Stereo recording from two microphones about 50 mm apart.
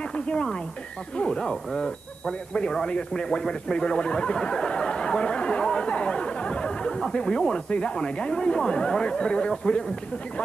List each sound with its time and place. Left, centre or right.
0.1 s speech: centre